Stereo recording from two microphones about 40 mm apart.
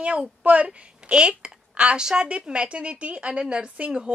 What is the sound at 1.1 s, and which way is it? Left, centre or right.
A woman's voice, right.